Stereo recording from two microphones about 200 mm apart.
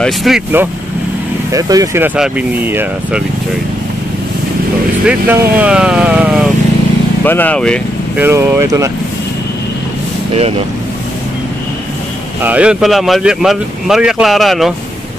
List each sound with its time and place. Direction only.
0.0 s speech: centre (ahead or behind)
1.5 s speech: 15° right (ahead or behind)
5.0 s speech: 5° right (ahead or behind)
7.2 s speech: 10° left (ahead or behind)
8.2 s speech: 10° right (ahead or behind)
12.4 s speech: 5° right (ahead or behind)